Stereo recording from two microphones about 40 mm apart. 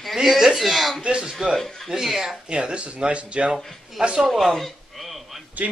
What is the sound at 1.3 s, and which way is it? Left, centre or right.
A man's voice, centre.